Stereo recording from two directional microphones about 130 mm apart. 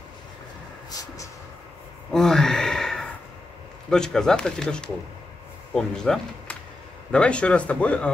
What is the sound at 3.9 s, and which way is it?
Speech, 5° left (ahead or behind).